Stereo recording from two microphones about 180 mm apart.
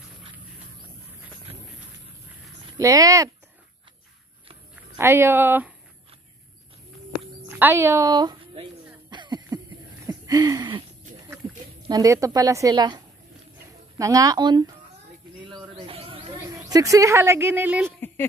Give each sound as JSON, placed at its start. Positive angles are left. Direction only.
{"t": 2.8, "sound": "speech", "side_deg": -20}
{"t": 4.7, "sound": "speech", "side_deg": -15}
{"t": 7.4, "sound": "a woman's voice", "side_deg": -10}
{"t": 9.1, "sound": "cough", "side_deg": -25}
{"t": 10.0, "sound": "a sound", "side_deg": -20}
{"t": 11.9, "sound": "speech", "side_deg": -20}
{"t": 15.7, "sound": "bird", "side_deg": -30}